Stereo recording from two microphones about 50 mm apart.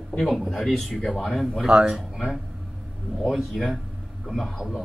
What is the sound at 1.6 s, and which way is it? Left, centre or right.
Speech, centre.